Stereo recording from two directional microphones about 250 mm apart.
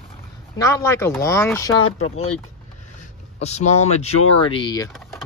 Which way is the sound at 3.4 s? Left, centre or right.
Left.